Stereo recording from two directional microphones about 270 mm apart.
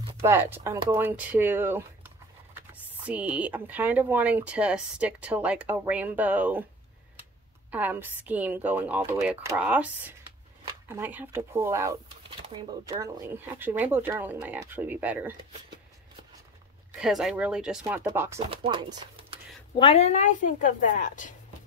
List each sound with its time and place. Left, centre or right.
0.0 s speech: centre
7.7 s speech: centre
17.0 s speech: centre
19.8 s a woman's voice: left